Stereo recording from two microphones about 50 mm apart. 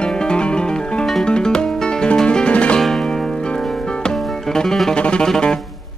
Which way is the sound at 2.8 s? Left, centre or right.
Centre.